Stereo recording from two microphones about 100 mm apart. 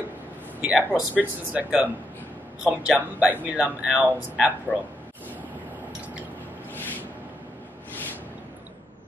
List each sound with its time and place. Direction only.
0.6 s speech: 10° right (ahead or behind)
4.7 s a man's voice: 15° left (ahead or behind)
6.7 s a sound: 20° left (ahead or behind)